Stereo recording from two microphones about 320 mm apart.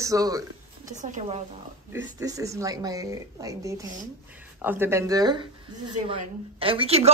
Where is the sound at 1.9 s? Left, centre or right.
Centre.